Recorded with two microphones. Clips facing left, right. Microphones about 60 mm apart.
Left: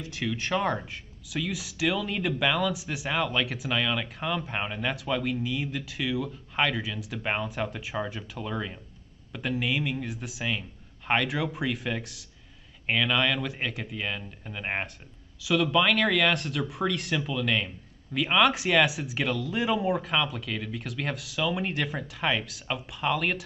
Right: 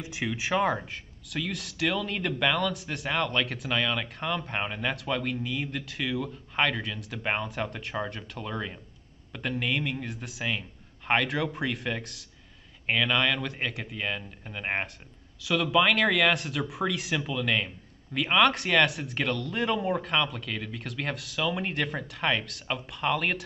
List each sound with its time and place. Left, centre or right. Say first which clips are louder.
0.0 s speech: even; centre